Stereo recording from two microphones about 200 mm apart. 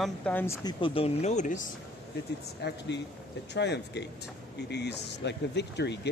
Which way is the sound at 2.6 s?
55° left (ahead or behind).